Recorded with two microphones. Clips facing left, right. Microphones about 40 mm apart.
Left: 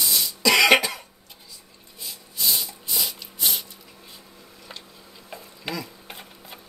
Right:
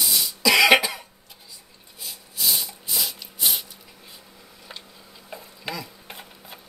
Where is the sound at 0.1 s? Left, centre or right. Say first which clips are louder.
Even; centre.